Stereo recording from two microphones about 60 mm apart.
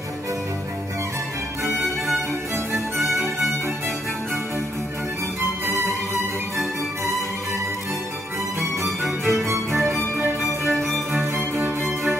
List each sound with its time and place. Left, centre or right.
1.8 s music: centre
8.5 s music: centre
9.8 s music: right
10.8 s music: centre
11.3 s music: right